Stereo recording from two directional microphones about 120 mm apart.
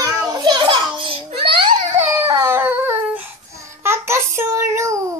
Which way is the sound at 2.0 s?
15° right (ahead or behind).